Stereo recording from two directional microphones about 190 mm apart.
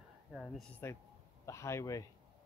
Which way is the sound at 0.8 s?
10° left (ahead or behind).